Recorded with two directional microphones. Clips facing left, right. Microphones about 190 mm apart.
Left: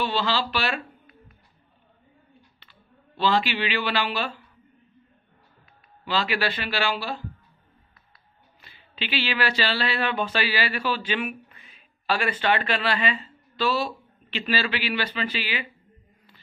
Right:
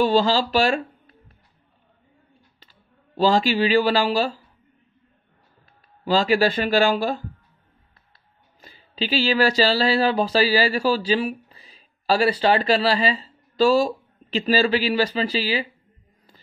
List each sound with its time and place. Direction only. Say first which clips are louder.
0.0 s speech: right 7 dB; 45° right (ahead or behind)
2.6 s speech: left 1 dB; 40° right (ahead or behind)
6.0 s speech: right 8 dB; 40° right (ahead or behind)
8.5 s speech: right 8 dB; 40° right (ahead or behind)